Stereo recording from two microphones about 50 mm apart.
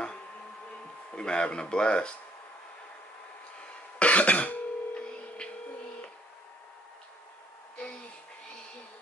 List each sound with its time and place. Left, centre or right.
1.1 s speech: centre
4.0 s throat clearing: left